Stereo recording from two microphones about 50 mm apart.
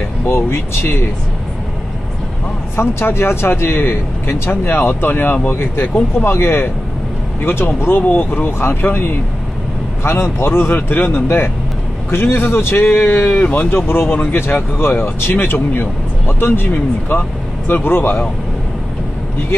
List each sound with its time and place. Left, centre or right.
0.3 s speech: left
2.7 s speech: left
8.0 s speech: left
10.4 s speech: left
13.7 s speech: left